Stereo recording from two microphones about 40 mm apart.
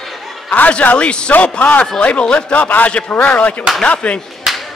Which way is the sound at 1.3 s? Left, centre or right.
Left.